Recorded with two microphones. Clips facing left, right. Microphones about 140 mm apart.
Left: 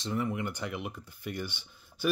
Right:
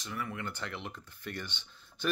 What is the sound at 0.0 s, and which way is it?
Speech, 25° left (ahead or behind).